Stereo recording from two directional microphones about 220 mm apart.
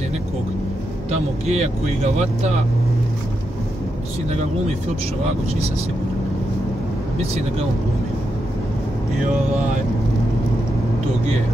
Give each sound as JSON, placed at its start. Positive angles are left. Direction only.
{"t": 1.1, "sound": "speech", "side_deg": -30}